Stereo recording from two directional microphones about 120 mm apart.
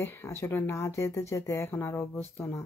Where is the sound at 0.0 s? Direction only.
20° left (ahead or behind).